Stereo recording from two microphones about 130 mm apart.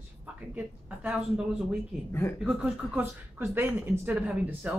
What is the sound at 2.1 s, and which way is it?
Speech, 15° left (ahead or behind).